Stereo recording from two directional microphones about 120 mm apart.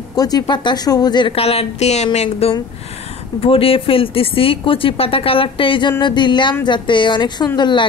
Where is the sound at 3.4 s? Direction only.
50° left (ahead or behind).